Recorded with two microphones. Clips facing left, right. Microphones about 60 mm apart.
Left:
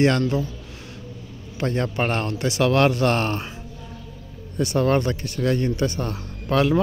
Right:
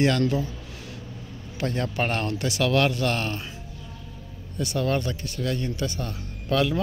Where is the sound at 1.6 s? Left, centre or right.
Left.